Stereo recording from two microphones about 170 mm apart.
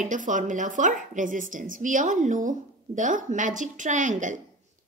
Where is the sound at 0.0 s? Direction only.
50° right (ahead or behind).